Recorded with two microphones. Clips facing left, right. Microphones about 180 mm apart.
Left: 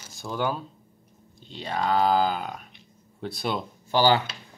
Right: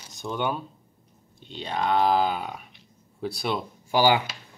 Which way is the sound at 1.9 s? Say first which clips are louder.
Even; centre (ahead or behind).